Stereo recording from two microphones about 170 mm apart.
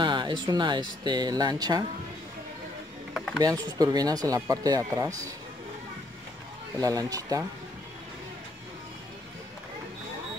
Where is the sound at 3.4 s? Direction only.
20° right (ahead or behind).